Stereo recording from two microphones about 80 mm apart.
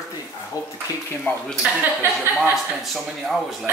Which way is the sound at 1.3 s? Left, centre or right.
Left.